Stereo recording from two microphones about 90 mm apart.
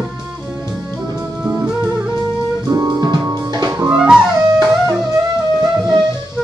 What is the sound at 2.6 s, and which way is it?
Music, 45° right (ahead or behind).